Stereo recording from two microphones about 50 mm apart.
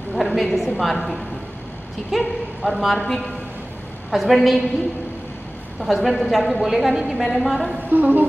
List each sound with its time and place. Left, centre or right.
0.1 s a woman's voice: centre
4.1 s a woman's voice: centre
5.8 s a woman's voice: centre
7.9 s a woman's voice: right